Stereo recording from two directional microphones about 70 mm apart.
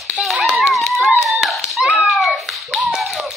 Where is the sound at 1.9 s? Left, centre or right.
Centre.